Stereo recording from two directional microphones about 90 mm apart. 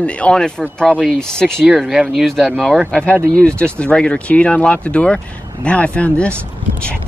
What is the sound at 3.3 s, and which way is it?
Speech, 10° left (ahead or behind).